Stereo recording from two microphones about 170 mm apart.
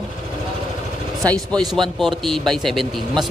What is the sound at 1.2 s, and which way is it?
A man's voice, 10° left (ahead or behind).